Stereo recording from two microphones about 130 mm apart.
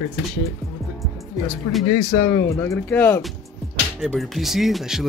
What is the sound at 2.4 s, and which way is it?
Speech, 20° left (ahead or behind).